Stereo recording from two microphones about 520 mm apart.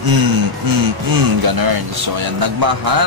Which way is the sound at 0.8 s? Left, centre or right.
Right.